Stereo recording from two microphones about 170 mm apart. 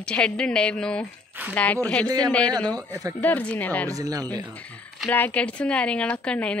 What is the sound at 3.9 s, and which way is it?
Speech, 20° right (ahead or behind).